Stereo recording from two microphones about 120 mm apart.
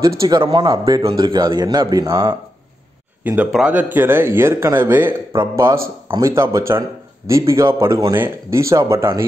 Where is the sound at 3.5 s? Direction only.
10° right (ahead or behind).